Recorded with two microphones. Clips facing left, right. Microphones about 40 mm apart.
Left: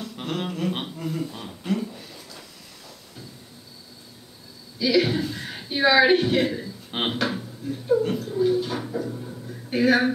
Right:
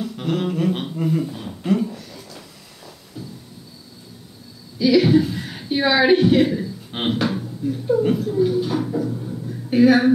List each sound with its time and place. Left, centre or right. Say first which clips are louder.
0.2 s a sound: right 6 dB; centre
0.9 s speech: right 7 dB; centre
4.7 s a woman's voice: right 6 dB; centre
7.2 s speech: right 4 dB; centre